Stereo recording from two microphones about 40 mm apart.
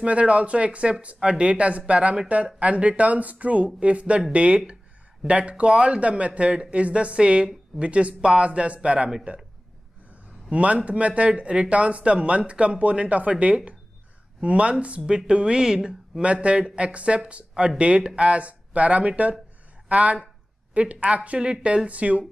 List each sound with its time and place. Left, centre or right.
0.0 s speech: right
10.5 s speech: right